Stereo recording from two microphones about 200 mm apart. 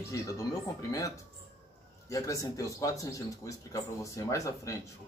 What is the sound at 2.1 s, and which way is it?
Speech, 15° left (ahead or behind).